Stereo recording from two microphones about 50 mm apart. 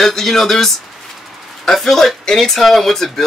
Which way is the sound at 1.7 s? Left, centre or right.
Centre.